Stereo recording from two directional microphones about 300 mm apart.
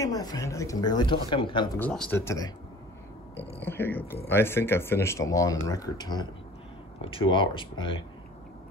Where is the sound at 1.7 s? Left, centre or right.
Centre.